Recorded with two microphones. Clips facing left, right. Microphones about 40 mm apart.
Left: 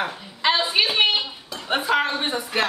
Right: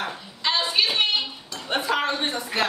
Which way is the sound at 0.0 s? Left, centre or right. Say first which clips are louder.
Left 4 dB; centre.